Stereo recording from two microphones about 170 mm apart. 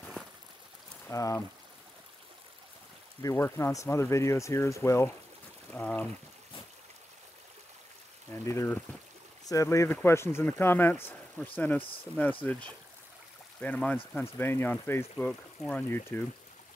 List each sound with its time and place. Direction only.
1.0 s speech: 20° left (ahead or behind)
3.2 s speech: 15° left (ahead or behind)
8.3 s speech: 15° left (ahead or behind)